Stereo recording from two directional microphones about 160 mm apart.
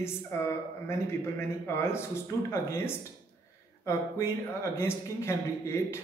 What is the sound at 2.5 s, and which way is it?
Speech, 15° left (ahead or behind).